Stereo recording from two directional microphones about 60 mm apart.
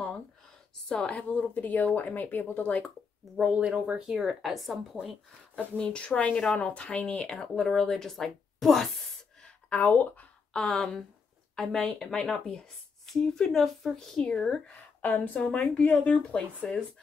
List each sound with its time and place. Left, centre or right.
0.8 s speech: centre; by 2.7 s left
3.5 s speech: centre
5.6 s speech: centre
9.4 s a sound: left
10.5 s speech: centre
15.0 s speech: left